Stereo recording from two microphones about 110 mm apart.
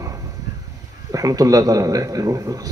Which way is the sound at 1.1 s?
35° right (ahead or behind).